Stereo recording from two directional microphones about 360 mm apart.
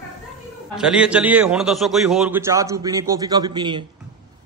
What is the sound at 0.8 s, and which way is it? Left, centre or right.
A man's voice, centre.